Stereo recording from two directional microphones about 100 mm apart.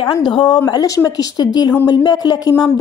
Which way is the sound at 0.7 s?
40° left (ahead or behind).